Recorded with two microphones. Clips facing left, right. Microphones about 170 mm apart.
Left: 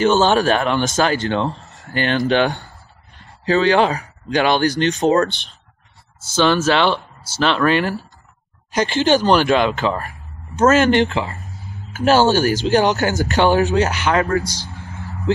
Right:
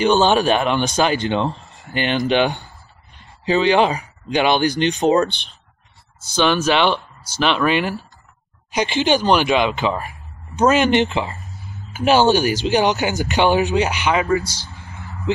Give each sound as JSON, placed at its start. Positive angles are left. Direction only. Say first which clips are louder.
{"t": 0.0, "sound": "speech", "louder": "even", "side_deg": -15}
{"t": 14.4, "sound": "speech", "louder": "left 4 dB", "side_deg": 15}